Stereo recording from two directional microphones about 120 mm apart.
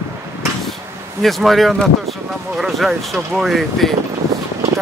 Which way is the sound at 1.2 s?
Centre (ahead or behind).